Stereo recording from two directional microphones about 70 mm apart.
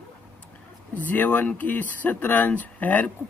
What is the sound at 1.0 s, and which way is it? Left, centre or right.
Speech, left.